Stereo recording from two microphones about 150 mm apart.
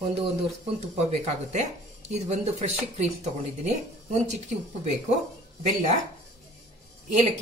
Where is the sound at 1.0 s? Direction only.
45° right (ahead or behind).